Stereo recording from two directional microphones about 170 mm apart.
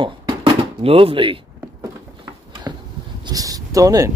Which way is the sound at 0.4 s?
35° right (ahead or behind).